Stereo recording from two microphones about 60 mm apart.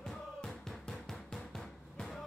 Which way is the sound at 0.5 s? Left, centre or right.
Centre.